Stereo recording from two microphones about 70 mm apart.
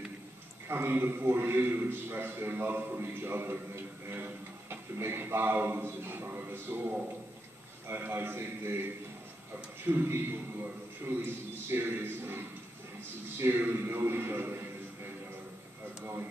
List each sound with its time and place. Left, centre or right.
0.7 s a man's voice: right
16.0 s speech: right